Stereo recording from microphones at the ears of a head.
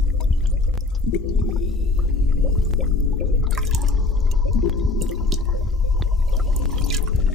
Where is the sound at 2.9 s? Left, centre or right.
Left.